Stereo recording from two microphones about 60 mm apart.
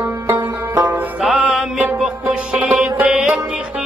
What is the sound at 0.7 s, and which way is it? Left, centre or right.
Music, right.